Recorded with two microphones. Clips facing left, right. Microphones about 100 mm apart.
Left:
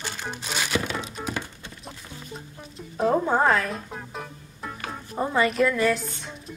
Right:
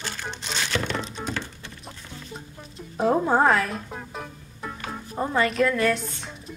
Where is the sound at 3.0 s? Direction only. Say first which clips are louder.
Right 1 dB; 5° right (ahead or behind).